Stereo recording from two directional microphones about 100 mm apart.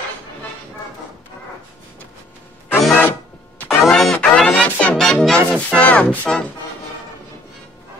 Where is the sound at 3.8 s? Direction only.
5° left (ahead or behind).